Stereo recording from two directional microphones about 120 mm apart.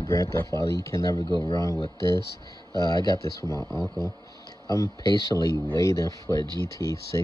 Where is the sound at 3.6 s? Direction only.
5° left (ahead or behind).